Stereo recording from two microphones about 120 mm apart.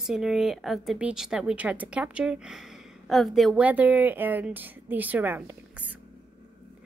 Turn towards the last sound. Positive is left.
turn(degrees=-15)  # may be behind; listen again after turning